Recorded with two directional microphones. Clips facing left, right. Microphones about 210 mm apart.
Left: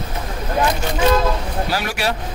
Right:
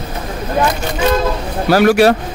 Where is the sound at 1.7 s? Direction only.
55° right (ahead or behind).